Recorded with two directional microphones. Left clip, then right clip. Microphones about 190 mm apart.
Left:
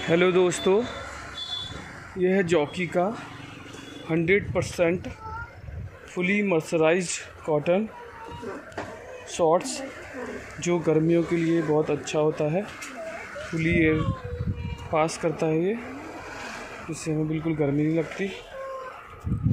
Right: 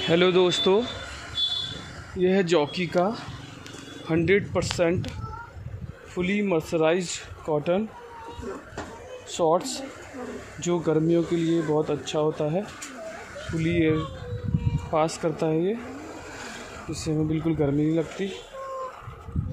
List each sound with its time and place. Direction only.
0.0 s speech: 10° right (ahead or behind)
1.4 s vehicle: 50° right (ahead or behind)
2.1 s speech: 5° right (ahead or behind)
4.1 s speech: 5° right (ahead or behind)
6.1 s speech: 5° right (ahead or behind)
9.3 s speech: centre (ahead or behind)
16.9 s speech: 10° right (ahead or behind)
17.3 s speech: 25° right (ahead or behind)
17.6 s speech: 10° right (ahead or behind)